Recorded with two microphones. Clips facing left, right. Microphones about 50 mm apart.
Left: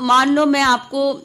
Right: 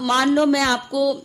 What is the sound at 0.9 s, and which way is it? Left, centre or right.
Speech, left.